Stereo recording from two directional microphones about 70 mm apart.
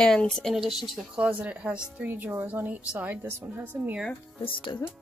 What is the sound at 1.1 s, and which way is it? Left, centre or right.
Speech, centre.